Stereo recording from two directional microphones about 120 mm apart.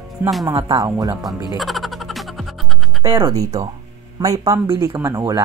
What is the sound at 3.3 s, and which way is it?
Speech, 30° right (ahead or behind).